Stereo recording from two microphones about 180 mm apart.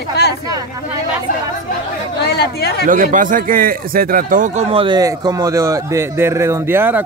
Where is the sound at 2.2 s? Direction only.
65° left (ahead or behind).